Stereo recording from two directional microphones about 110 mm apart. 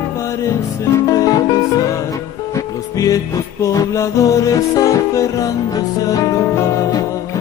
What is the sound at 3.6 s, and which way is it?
Music, 30° left (ahead or behind).